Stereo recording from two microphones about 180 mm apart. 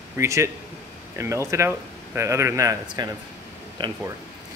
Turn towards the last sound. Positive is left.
turn(degrees=-25)  # may be behind; listen again after turning